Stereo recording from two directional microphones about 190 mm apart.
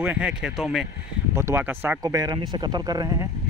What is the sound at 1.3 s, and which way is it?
Speech, 15° right (ahead or behind).